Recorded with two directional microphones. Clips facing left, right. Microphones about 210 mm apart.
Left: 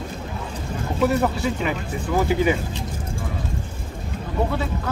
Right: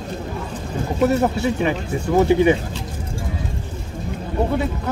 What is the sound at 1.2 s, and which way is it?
Speech, 20° right (ahead or behind).